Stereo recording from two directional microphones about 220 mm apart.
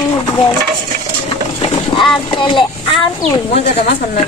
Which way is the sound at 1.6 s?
20° left (ahead or behind).